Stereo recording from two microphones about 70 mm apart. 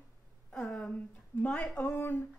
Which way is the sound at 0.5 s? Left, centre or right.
Centre.